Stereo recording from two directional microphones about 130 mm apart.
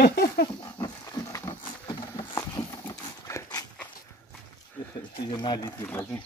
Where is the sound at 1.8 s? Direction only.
35° left (ahead or behind).